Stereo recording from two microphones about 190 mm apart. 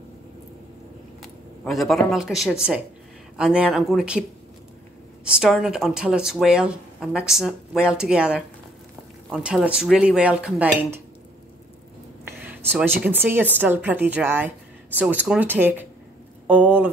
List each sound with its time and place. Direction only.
1.2 s a sound: centre (ahead or behind)
2.0 s speech: centre (ahead or behind)
5.2 s speech: centre (ahead or behind)
12.3 s speech: 10° right (ahead or behind)